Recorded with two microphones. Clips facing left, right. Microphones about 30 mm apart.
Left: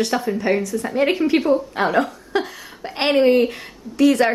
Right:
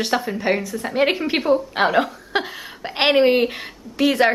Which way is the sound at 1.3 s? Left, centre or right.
Centre.